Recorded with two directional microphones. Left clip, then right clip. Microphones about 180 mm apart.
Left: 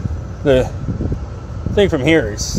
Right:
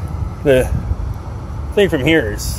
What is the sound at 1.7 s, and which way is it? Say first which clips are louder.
Speech: even; 15° left (ahead or behind).